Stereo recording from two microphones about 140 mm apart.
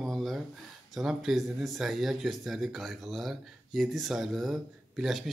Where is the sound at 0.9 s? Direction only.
Centre (ahead or behind).